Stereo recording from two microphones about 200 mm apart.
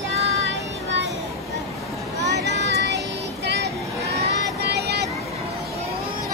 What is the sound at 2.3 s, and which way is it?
Child singing, 60° right (ahead or behind).